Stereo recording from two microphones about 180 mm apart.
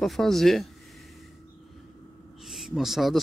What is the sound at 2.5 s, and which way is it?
Speech, centre (ahead or behind).